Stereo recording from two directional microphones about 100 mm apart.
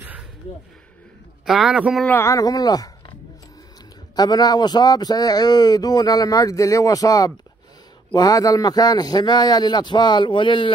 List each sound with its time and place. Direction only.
1.4 s speech: 5° right (ahead or behind)
2.0 s speech: 20° left (ahead or behind)
2.3 s speech: 40° left (ahead or behind)
4.1 s a man's voice: 40° left (ahead or behind); by 10.7 s 55° left (ahead or behind)